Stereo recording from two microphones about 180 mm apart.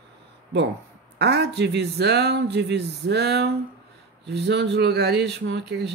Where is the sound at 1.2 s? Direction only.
70° right (ahead or behind).